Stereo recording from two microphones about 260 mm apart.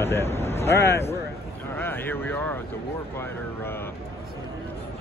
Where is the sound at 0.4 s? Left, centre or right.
Left.